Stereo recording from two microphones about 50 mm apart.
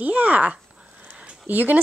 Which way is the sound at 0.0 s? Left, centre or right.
Right.